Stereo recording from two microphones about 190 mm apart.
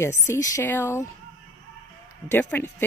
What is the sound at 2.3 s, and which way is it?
Speech, 10° left (ahead or behind).